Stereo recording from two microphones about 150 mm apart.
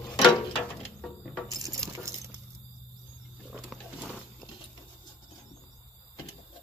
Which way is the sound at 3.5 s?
5° right (ahead or behind).